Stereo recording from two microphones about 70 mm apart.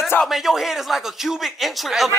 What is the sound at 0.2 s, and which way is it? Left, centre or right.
A man's voice, centre.